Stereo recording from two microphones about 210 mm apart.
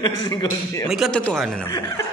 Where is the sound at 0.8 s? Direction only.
Centre (ahead or behind).